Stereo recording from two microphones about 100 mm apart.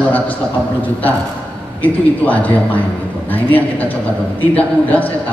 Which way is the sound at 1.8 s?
15° left (ahead or behind).